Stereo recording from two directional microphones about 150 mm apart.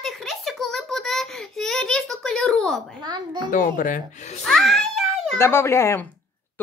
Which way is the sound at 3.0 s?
30° right (ahead or behind).